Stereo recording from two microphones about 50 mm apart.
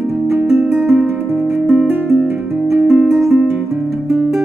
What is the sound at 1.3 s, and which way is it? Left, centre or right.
Music, centre.